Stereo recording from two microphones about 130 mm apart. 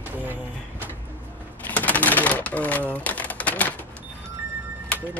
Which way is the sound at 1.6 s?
10° left (ahead or behind).